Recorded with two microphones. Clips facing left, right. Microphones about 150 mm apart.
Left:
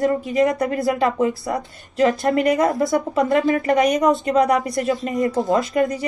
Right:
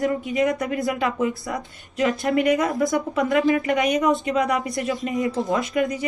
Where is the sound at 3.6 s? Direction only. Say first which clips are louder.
Left 4 dB; 40° left (ahead or behind).